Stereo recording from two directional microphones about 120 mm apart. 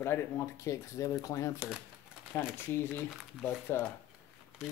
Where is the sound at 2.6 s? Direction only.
20° left (ahead or behind).